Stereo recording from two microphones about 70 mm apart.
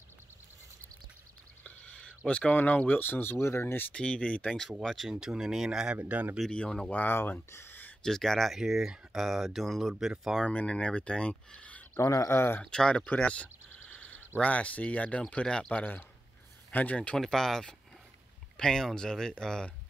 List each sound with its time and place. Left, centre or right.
1.6 s speech: centre; by 3.9 s left
3.9 s speech: centre
4.6 s speech: centre
5.9 s speech: right
6.5 s speech: centre
6.9 s speech: left
8.0 s speech: centre
10.4 s speech: centre
12.0 s speech: left
12.4 s speech: left
12.6 s speech: centre
13.1 s a sound: centre
14.4 s speech: centre
17.2 s speech: centre